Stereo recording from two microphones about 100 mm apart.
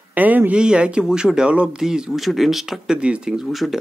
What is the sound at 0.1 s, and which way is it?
Speech, 15° right (ahead or behind).